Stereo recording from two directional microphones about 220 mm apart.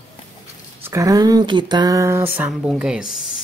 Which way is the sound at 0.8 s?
15° right (ahead or behind).